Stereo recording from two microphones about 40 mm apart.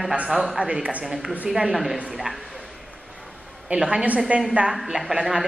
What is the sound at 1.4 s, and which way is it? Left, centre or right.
Speech, centre.